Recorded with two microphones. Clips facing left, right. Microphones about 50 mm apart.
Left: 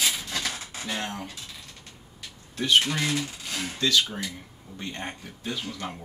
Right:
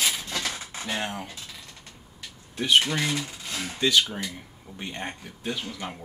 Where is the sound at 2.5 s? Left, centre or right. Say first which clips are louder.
Right 1 dB; centre.